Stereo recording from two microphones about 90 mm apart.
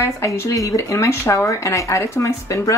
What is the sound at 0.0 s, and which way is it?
Speech, 30° left (ahead or behind).